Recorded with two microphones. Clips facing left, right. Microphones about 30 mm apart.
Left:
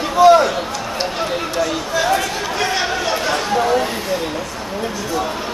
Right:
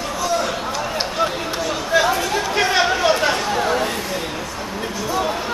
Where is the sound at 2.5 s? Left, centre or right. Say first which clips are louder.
Right 2 dB; centre.